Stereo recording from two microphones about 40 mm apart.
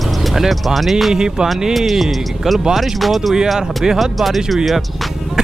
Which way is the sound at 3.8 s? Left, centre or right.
Centre.